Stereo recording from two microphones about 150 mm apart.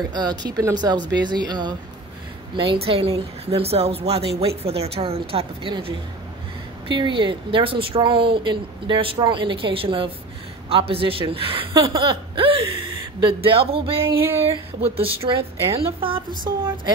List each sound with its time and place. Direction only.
0.1 s speech: 30° right (ahead or behind)
14.0 s a sound: 15° right (ahead or behind)
14.8 s speech: 40° right (ahead or behind)